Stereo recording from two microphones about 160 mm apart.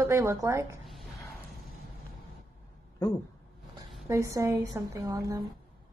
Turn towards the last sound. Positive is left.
turn(degrees=-20)  # may be behind; listen again after turning